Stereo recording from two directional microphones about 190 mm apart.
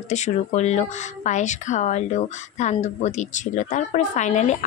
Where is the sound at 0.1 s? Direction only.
35° left (ahead or behind).